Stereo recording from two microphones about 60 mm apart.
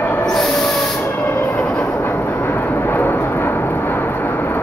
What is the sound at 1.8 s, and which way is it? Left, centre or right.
Vehicle, left.